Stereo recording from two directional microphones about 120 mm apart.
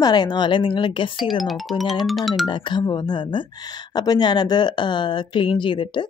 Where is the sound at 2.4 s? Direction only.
40° left (ahead or behind).